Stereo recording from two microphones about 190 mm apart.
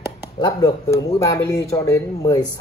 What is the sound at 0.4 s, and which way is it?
Speech, 20° left (ahead or behind).